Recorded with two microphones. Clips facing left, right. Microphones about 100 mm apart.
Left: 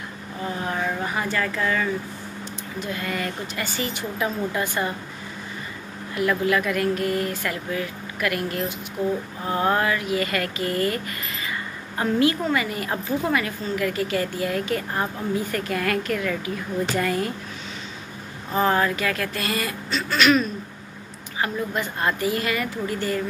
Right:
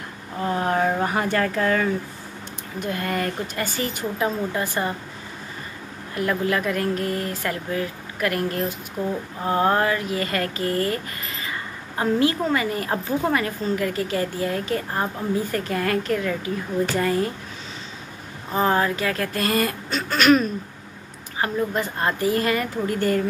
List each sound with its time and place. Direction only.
0.5 s a sound: 55° right (ahead or behind)
1.0 s speech: 55° right (ahead or behind)
4.2 s a woman's voice: 30° right (ahead or behind)
6.1 s a woman's voice: 35° right (ahead or behind)
12.0 s a woman's voice: 30° right (ahead or behind)
18.5 s a woman's voice: 25° right (ahead or behind)
22.9 s speech: 50° right (ahead or behind)